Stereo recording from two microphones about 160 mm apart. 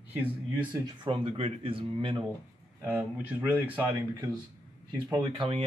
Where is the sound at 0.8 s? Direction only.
30° right (ahead or behind).